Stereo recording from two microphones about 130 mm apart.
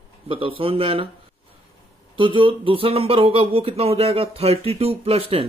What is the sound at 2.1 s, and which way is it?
Speech, 40° right (ahead or behind).